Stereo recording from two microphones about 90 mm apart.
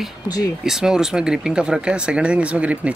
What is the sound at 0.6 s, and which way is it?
Speech, 5° right (ahead or behind).